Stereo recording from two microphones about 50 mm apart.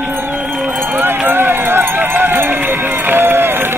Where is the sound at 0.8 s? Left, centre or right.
Right.